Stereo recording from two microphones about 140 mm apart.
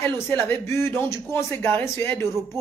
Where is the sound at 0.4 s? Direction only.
20° left (ahead or behind).